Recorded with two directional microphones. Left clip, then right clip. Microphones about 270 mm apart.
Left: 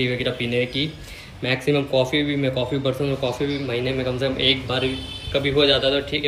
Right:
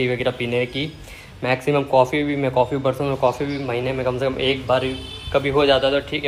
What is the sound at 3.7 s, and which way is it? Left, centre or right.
Speech, centre.